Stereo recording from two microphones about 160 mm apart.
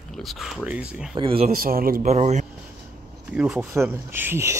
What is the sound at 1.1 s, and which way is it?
Speech, 35° right (ahead or behind).